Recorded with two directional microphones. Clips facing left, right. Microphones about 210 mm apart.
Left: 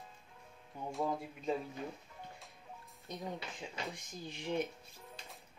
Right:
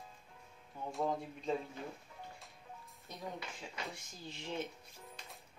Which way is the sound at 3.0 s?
20° left (ahead or behind).